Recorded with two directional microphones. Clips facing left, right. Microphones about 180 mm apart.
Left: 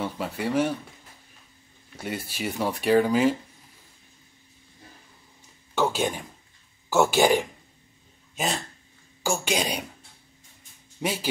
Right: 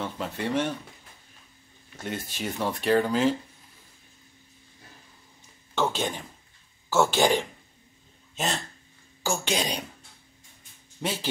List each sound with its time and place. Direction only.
0.0 s speech: 10° left (ahead or behind)
2.0 s speech: 10° left (ahead or behind)
5.8 s speech: 10° left (ahead or behind)
9.2 s speech: 10° left (ahead or behind)
11.0 s speech: 10° left (ahead or behind)